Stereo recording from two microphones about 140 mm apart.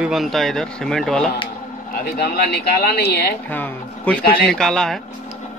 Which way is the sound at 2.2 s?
90° left.